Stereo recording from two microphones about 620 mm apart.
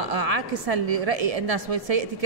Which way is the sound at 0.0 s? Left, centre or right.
Right.